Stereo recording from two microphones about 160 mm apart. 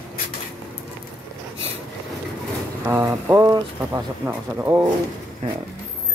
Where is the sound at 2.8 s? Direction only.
15° right (ahead or behind).